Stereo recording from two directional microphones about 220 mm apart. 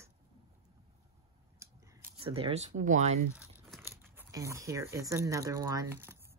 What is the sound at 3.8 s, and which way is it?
Speech, 10° right (ahead or behind).